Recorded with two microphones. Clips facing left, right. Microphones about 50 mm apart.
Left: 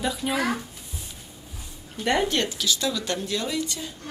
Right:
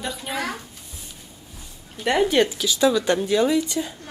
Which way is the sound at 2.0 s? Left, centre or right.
Centre.